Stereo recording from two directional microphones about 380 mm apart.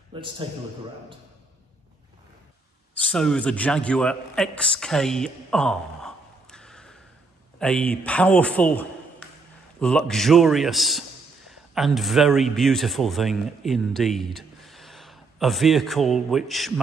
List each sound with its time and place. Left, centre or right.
0.1 s a man's voice: centre
3.1 s a man's voice: centre